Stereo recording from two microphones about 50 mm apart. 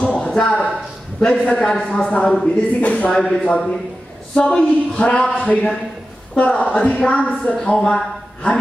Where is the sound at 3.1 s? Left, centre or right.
Centre.